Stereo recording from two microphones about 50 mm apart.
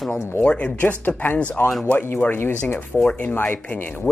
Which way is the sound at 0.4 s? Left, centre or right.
Left.